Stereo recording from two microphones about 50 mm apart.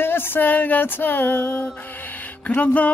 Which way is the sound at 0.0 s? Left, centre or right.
Left.